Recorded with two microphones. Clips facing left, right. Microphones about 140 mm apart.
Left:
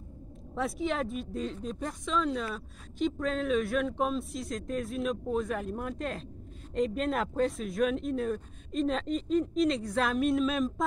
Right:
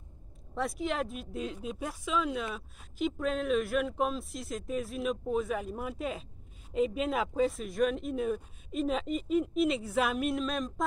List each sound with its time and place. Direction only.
0.6 s speech: centre (ahead or behind)